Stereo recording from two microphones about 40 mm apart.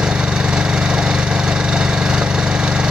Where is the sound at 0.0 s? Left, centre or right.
Centre.